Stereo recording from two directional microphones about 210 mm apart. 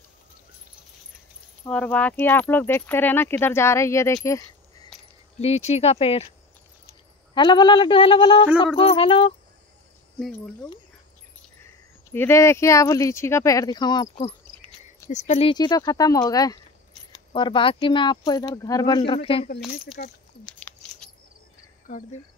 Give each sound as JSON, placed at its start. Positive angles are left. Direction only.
{"t": 1.7, "sound": "speech", "side_deg": 5}
{"t": 5.4, "sound": "pulleys", "side_deg": 30}
{"t": 7.3, "sound": "pulleys", "side_deg": 20}
{"t": 10.1, "sound": "speech", "side_deg": 0}
{"t": 12.1, "sound": "speech", "side_deg": 10}
{"t": 15.0, "sound": "pulleys", "side_deg": 30}
{"t": 20.4, "sound": "a sound", "side_deg": 5}